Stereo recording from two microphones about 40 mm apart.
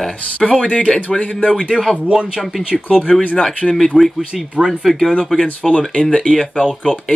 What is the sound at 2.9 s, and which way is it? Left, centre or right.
Speech, left.